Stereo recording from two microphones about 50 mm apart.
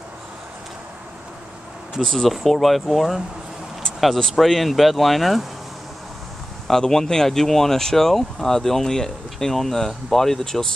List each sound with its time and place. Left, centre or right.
2.0 s speech: centre
4.4 s speech: centre
6.7 s speech: centre